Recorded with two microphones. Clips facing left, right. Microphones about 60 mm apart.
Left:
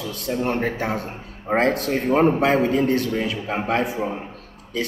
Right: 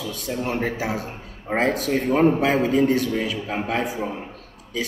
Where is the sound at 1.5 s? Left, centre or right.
Centre.